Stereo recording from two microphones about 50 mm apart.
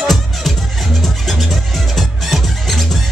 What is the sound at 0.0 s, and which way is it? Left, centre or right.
Music, centre.